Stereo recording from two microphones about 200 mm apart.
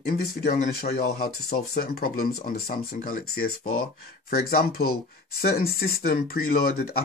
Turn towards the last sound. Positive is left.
turn(degrees=45)  # may be behind; listen again after turning